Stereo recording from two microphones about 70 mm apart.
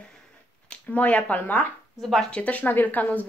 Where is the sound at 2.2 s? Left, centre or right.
Centre.